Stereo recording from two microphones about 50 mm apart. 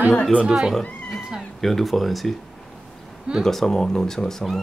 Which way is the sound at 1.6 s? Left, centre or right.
Centre.